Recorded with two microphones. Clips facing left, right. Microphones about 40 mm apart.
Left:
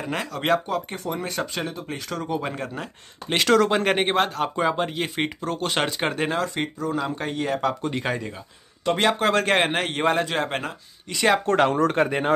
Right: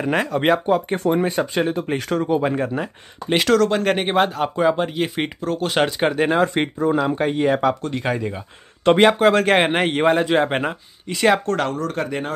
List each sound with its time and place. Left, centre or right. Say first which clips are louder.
0.0 s speech: right 8 dB; right
1.7 s speech: right 9 dB; right
2.1 s speech: right 8 dB; centre
3.5 s speech: even; centre
4.1 s speech: right 4 dB; centre
6.2 s speech: right 7 dB; right
8.0 s speech: right 4 dB; centre
8.8 s speech: right 8 dB; right
9.2 s speech: right 5 dB; centre
11.1 s speech: right 3 dB; centre
11.4 s speech: left 2 dB; centre
11.7 s speech: left 4 dB; left